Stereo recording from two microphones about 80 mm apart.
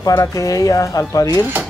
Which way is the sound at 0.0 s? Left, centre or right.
Left.